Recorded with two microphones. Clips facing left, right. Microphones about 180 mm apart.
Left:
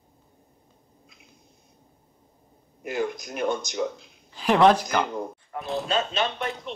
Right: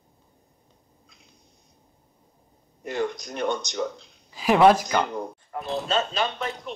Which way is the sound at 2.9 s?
5° left (ahead or behind).